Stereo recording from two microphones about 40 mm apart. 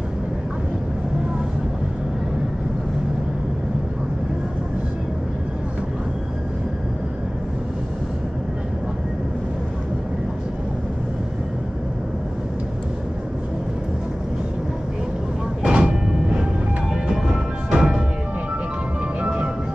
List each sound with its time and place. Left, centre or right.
15.6 s train: right
16.9 s music: centre
19.2 s music: right